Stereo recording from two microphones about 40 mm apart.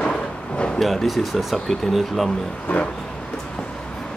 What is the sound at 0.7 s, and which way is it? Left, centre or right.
Speech, centre.